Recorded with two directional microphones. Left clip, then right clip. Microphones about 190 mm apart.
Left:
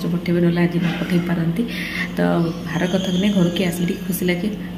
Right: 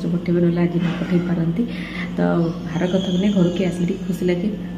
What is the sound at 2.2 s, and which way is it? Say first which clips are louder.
A woman's voice: right 1 dB; centre (ahead or behind).